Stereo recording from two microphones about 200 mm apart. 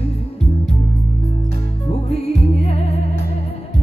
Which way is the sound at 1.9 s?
30° left (ahead or behind).